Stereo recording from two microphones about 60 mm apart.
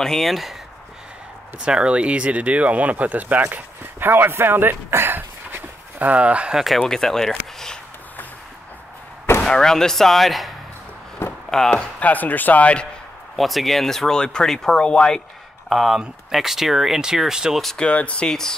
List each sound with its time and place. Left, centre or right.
0.0 s speech: centre
1.6 s speech: centre
6.5 s speech: centre
9.4 s speech: centre
11.2 s a sound: left
11.5 s speech: centre
12.0 s speech: left
13.4 s speech: centre
15.7 s speech: centre
17.6 s speech: centre
17.8 s speech: centre